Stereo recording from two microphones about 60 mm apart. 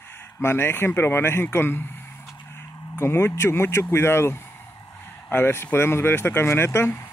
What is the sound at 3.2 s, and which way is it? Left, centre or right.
Speech, left.